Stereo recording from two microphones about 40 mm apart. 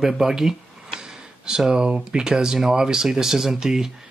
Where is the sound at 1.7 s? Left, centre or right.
Right.